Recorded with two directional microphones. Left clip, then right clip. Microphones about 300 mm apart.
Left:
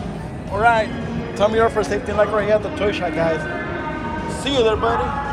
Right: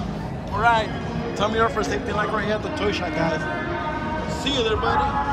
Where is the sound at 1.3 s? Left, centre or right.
Centre.